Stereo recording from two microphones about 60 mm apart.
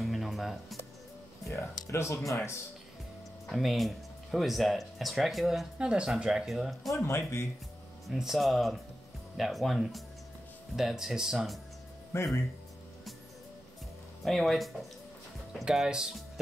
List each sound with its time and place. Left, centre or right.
0.0 s music: centre
1.5 s music: left
3.4 s speech: centre
5.8 s speech: centre
6.5 s speech: centre
6.9 s speech: left
8.1 s speech: centre
12.1 s speech: left
14.2 s speech: centre
15.6 s speech: centre